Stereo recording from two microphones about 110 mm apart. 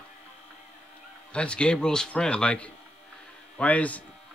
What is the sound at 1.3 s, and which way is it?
Speech, 10° left (ahead or behind).